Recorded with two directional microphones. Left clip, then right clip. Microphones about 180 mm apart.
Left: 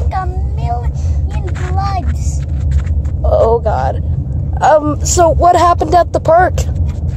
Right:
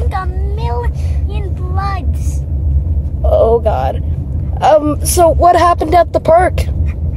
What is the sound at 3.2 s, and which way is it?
Speech, 5° right (ahead or behind).